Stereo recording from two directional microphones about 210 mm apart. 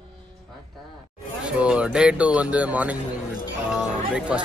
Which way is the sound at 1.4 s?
5° right (ahead or behind).